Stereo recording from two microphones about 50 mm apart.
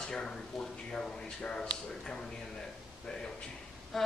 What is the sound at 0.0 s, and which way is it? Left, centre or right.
A woman's voice, centre.